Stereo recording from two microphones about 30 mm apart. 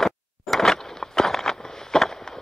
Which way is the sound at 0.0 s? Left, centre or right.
Centre.